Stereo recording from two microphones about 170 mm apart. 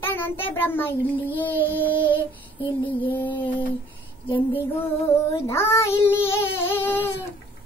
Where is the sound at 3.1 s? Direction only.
10° left (ahead or behind).